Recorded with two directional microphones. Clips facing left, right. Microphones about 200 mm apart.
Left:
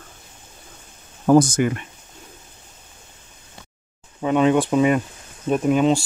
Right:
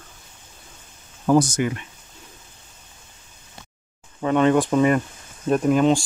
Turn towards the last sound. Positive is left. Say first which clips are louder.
# even
turn(degrees=0)  # may be behind; listen again after turning